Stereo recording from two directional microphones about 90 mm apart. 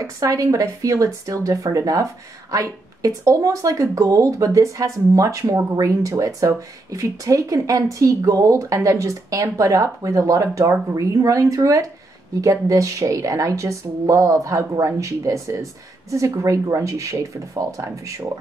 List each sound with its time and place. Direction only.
0.0 s speech: 35° right (ahead or behind)